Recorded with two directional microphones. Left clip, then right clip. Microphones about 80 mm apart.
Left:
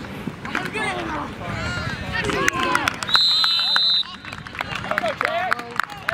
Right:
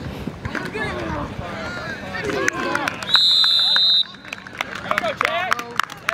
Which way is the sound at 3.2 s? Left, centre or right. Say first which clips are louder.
Right 3 dB; centre.